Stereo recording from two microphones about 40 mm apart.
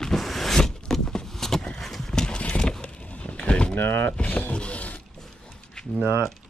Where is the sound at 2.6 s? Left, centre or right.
Left.